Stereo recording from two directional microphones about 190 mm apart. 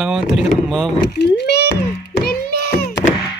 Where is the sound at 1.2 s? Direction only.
60° left (ahead or behind).